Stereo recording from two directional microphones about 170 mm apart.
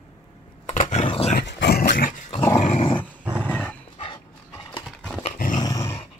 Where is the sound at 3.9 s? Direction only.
30° left (ahead or behind).